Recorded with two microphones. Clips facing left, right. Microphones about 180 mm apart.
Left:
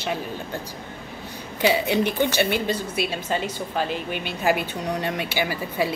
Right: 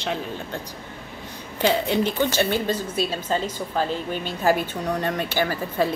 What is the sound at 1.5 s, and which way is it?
A woman's voice, 10° left (ahead or behind).